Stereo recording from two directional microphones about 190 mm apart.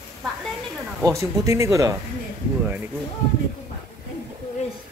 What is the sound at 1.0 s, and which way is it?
Speech, 15° right (ahead or behind).